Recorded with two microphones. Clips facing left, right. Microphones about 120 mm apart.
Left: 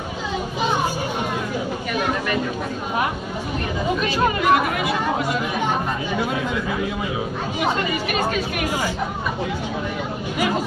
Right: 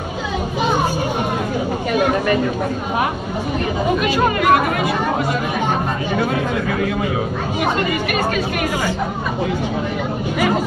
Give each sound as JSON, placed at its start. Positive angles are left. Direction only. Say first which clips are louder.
{"t": 2.0, "sound": "a sound", "louder": "right 7 dB", "side_deg": -50}
{"t": 4.4, "sound": "speech", "louder": "right 3 dB", "side_deg": -50}
{"t": 6.1, "sound": "speech", "louder": "right 5 dB", "side_deg": -55}